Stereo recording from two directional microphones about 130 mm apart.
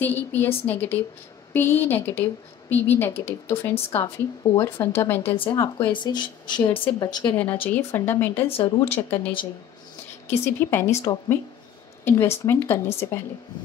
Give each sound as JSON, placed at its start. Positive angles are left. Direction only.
{"t": 0.0, "sound": "a woman's voice", "side_deg": 15}
{"t": 5.3, "sound": "a woman's voice", "side_deg": 40}
{"t": 7.7, "sound": "a woman's voice", "side_deg": 20}
{"t": 8.5, "sound": "a woman's voice", "side_deg": 45}
{"t": 10.3, "sound": "speech", "side_deg": 20}